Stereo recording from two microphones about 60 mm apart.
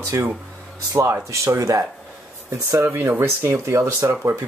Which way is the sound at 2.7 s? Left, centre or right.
Right.